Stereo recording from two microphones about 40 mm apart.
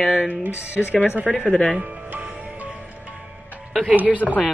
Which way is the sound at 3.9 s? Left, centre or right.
Right.